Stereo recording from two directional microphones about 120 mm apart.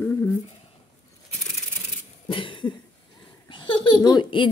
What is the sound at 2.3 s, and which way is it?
Cough, 45° left (ahead or behind).